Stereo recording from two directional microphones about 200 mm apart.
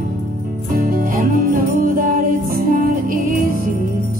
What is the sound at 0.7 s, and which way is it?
Music, 45° right (ahead or behind).